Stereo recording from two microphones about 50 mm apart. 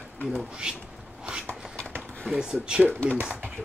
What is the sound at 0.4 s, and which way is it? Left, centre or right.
Speech, centre.